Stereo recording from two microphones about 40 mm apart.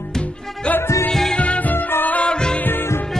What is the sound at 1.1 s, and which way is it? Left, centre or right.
Music, centre.